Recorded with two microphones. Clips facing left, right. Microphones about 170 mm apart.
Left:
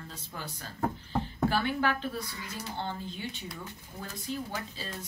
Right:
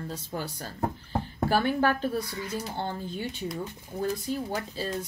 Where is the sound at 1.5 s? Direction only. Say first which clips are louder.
Right 8 dB; 40° right (ahead or behind).